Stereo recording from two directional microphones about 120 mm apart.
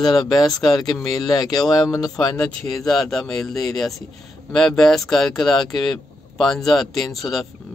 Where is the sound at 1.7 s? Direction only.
30° left (ahead or behind).